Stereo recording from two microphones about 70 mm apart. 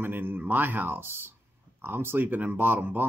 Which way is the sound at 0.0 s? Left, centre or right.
Right.